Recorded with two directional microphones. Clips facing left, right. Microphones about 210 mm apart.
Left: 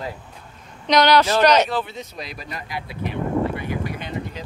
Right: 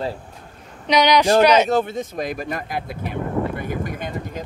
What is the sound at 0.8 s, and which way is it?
Speech, 10° right (ahead or behind).